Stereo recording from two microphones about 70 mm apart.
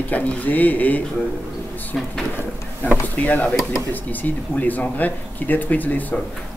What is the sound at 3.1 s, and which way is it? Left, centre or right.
Speech, left.